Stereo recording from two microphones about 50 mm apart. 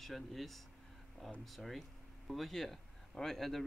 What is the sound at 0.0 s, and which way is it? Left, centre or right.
Speech, centre.